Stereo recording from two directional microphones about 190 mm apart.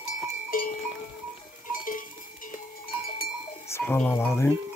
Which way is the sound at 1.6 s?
45° left (ahead or behind).